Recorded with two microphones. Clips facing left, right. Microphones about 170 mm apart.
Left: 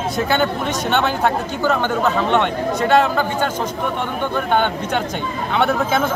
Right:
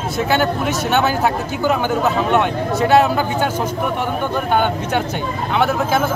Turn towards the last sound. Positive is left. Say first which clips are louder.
# right 1 dB
turn(degrees=-5)  # may be behind; listen again after turning